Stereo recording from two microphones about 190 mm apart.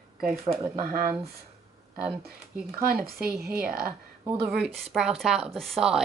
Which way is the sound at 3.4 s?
55° right (ahead or behind).